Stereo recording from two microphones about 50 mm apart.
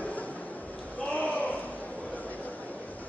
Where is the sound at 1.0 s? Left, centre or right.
Left.